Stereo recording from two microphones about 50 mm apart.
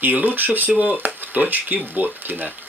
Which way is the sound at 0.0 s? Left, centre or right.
Right.